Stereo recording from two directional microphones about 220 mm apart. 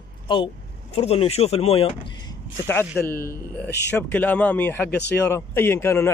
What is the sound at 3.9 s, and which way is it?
Speech, 10° left (ahead or behind).